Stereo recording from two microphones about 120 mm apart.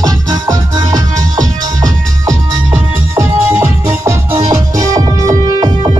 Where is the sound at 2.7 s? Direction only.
20° right (ahead or behind).